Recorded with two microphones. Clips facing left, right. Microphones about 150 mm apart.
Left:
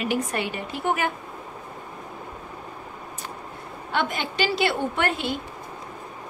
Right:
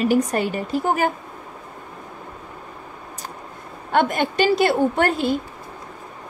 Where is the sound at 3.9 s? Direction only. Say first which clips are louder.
Right 7 dB; 50° right (ahead or behind).